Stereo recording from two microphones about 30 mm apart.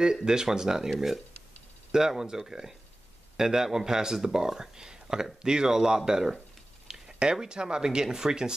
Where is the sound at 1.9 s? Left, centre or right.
Centre.